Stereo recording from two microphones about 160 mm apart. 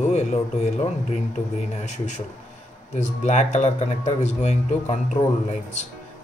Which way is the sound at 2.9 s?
45° left (ahead or behind).